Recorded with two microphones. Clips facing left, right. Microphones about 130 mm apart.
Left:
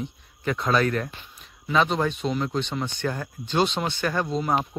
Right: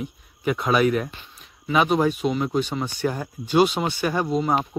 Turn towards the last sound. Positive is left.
turn(degrees=-5)  # may be behind; listen again after turning